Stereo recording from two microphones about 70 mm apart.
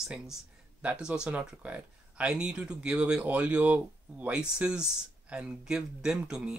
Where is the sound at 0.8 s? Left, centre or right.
Centre.